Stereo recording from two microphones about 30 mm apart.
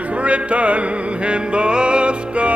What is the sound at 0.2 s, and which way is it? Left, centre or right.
Music, right.